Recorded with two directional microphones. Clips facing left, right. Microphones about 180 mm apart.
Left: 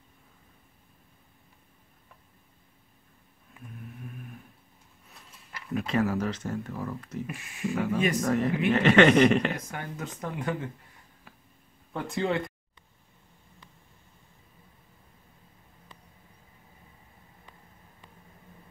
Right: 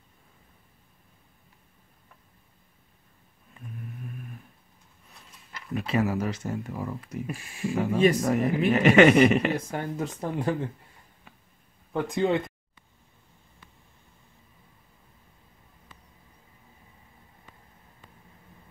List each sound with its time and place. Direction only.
3.5 s a sound: centre (ahead or behind)
5.5 s speech: centre (ahead or behind)
7.2 s speech: 30° right (ahead or behind)
7.7 s speech: 10° right (ahead or behind)
9.6 s speech: 30° right (ahead or behind)
11.3 s a sound: centre (ahead or behind)
11.9 s speech: 15° right (ahead or behind)